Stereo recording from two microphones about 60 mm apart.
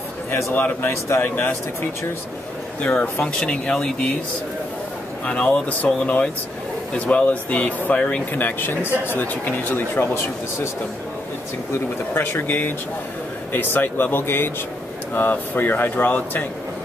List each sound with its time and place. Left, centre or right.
0.3 s speech: left
1.2 s speech: left
2.8 s speech: centre
5.2 s speech: left
8.3 s speech: left
12.1 s speech: left